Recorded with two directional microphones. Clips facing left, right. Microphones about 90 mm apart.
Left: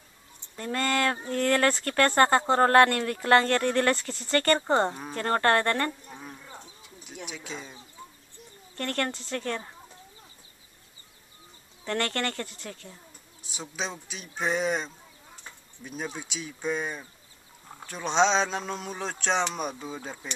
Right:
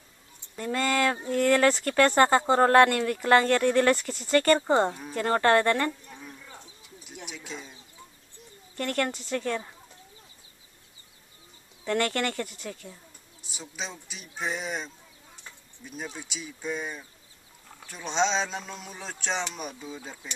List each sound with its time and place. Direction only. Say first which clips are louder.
0.6 s a woman's voice: right 1 dB; 5° right (ahead or behind)
6.0 s livestock: left 2 dB; 30° left (ahead or behind)
7.2 s speech: left 1 dB; centre (ahead or behind)
8.7 s a woman's voice: right 2 dB; 10° right (ahead or behind)
11.8 s a woman's voice: right 2 dB; 5° right (ahead or behind)
13.4 s speech: left 4 dB; centre (ahead or behind)
16.2 s speech: left 2 dB; centre (ahead or behind)
16.6 s speech: left 3 dB; 40° left (ahead or behind)
18.0 s speech: left 3 dB; centre (ahead or behind)
18.6 s speech: left 7 dB; 40° left (ahead or behind)
19.1 s speech: left 4 dB; centre (ahead or behind)
19.4 s speech: left 5 dB; 40° left (ahead or behind)